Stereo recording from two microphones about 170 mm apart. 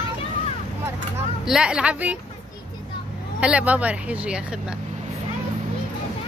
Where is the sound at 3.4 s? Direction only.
5° right (ahead or behind).